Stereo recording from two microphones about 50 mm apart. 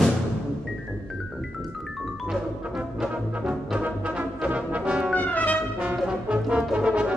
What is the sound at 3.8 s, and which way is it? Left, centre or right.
Brass instrument, right.